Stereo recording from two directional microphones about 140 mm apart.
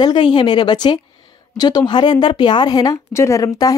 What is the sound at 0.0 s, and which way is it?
A woman's voice, 35° left (ahead or behind).